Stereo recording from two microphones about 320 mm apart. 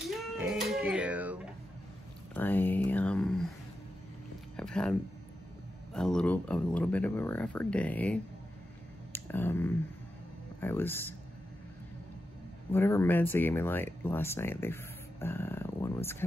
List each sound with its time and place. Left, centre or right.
0.1 s speech: centre
4.6 s speech: centre
5.9 s speech: centre
12.7 s speech: centre